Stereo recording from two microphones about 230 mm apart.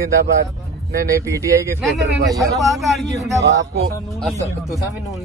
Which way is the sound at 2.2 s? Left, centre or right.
Centre.